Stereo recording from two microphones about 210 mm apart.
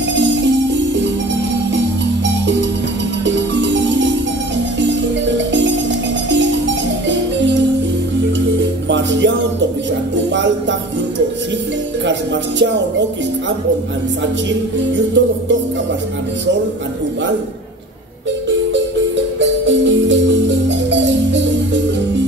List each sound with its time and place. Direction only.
0.1 s music: 60° right (ahead or behind)
3.3 s music: 60° right (ahead or behind)
8.8 s music: 60° right (ahead or behind)
10.3 s music: 60° right (ahead or behind)
15.0 s music: 60° right (ahead or behind)
19.6 s music: 60° right (ahead or behind)